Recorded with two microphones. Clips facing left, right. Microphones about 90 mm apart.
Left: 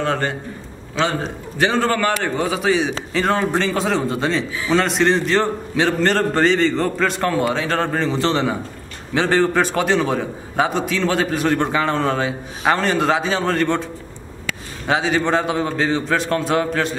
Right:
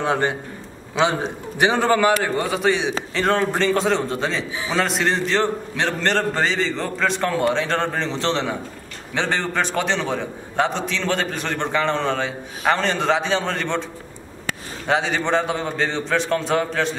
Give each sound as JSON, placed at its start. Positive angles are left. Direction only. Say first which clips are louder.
{"t": 0.0, "sound": "a man's voice", "louder": "even", "side_deg": -15}
{"t": 2.3, "sound": "a man's voice", "louder": "left 2 dB", "side_deg": 0}
{"t": 14.9, "sound": "a man's voice", "louder": "left 2 dB", "side_deg": 0}